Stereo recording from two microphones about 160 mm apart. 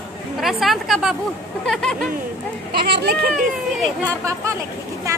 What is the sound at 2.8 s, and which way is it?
Speech, 90° right.